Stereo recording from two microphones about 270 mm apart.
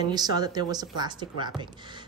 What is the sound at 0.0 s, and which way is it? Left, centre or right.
A woman's voice, centre.